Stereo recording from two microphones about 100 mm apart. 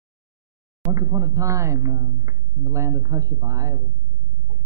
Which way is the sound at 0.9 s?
35° right (ahead or behind).